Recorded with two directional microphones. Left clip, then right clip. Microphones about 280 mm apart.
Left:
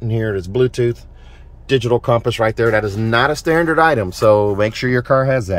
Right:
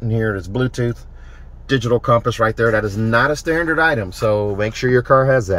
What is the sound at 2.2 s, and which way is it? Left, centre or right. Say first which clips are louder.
Speech: left 1 dB; centre.